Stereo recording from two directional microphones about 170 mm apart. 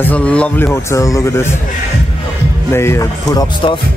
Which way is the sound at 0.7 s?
20° left (ahead or behind).